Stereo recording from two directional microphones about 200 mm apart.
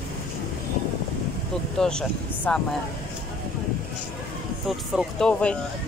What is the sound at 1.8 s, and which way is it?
Speech, 5° left (ahead or behind).